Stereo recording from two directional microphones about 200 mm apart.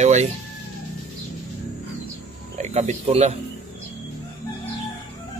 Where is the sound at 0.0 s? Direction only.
35° right (ahead or behind).